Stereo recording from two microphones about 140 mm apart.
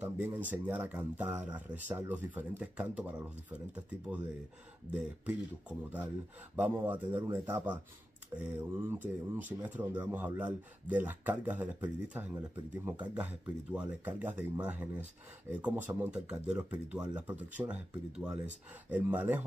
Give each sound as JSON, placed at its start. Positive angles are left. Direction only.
{"t": 0.0, "sound": "speech", "side_deg": -10}
{"t": 5.2, "sound": "speech", "side_deg": -10}